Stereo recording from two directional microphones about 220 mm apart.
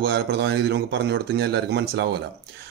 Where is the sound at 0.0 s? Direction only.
50° right (ahead or behind).